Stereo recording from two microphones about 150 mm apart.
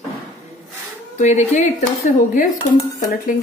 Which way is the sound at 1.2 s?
55° left (ahead or behind).